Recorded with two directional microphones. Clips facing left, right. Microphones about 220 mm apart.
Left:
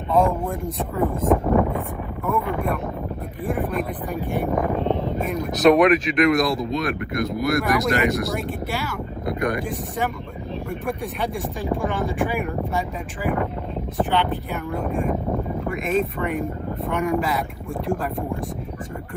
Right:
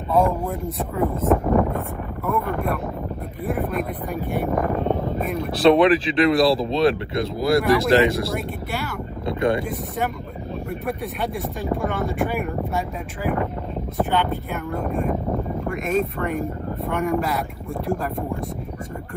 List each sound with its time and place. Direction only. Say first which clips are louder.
0.1 s speech: even; centre (ahead or behind)
1.1 s speech: even; 15° left (ahead or behind)
1.4 s speech: even; centre (ahead or behind)
4.8 s a sound: even; centre (ahead or behind)
5.5 s speech: even; 30° right (ahead or behind)
11.7 s speech: even; centre (ahead or behind)